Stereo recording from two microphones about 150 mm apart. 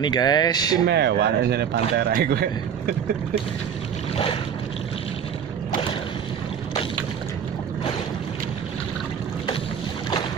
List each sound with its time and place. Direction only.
0.0 s speech: 30° left (ahead or behind)
0.9 s a man's voice: 90° right